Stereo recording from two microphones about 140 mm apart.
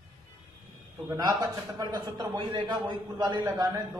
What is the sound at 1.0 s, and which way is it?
A man's voice, 25° right (ahead or behind).